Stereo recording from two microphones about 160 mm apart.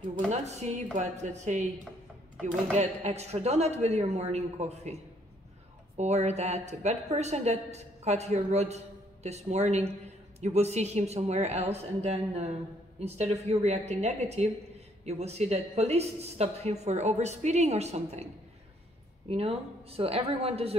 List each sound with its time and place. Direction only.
0.3 s a woman's voice: 45° right (ahead or behind)
2.8 s a woman's voice: 45° right (ahead or behind)
5.9 s a woman's voice: 45° right (ahead or behind)